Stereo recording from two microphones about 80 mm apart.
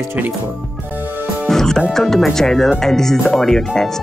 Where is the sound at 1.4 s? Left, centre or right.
Centre.